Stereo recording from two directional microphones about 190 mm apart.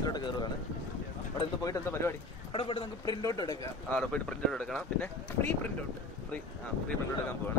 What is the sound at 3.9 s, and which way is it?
Speech, 5° left (ahead or behind).